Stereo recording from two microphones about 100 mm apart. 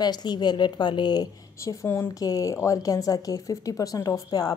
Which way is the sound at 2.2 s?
35° left (ahead or behind).